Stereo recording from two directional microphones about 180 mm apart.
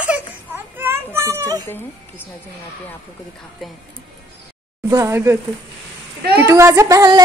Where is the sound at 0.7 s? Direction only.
15° right (ahead or behind).